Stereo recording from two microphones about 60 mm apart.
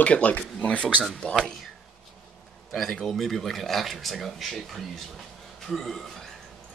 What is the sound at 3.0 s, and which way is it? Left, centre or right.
Speech, centre.